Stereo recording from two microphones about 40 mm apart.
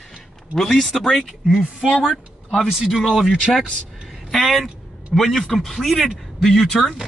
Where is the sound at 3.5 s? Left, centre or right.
Centre.